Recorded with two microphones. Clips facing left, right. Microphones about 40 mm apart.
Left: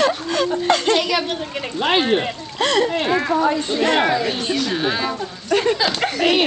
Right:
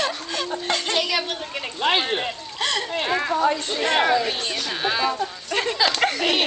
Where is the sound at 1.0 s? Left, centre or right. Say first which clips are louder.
Left 4 dB; centre.